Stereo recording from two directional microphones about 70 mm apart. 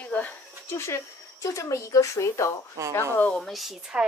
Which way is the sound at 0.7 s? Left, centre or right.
Left.